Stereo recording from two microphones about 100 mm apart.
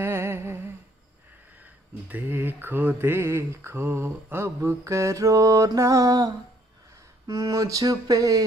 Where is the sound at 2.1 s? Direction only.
20° right (ahead or behind); by 6.3 s 40° right (ahead or behind).